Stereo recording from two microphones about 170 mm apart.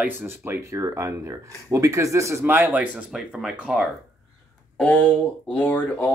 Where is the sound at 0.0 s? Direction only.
10° right (ahead or behind).